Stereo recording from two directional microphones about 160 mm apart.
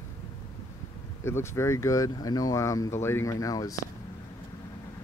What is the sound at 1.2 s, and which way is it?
Speech, 15° left (ahead or behind).